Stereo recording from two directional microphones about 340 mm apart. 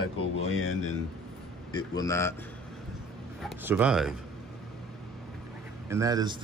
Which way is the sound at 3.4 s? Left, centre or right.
Centre.